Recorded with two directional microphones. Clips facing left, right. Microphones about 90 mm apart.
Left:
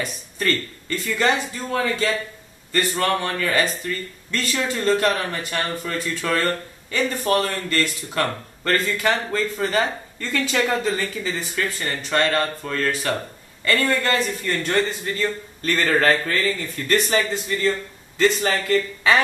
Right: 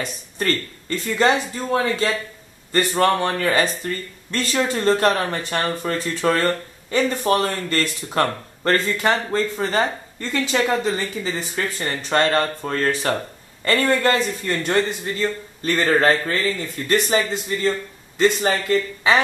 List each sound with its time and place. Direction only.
0.0 s a man's voice: 35° right (ahead or behind)
16.6 s speech: 10° right (ahead or behind)
17.6 s speech: 20° right (ahead or behind)